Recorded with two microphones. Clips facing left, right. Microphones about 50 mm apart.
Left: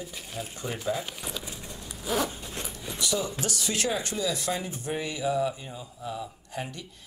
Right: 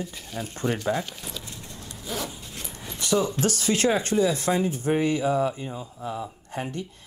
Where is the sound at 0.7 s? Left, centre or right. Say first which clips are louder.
Right 2 dB; centre.